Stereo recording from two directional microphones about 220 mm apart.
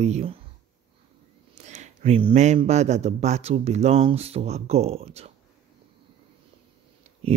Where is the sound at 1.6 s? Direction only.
30° right (ahead or behind).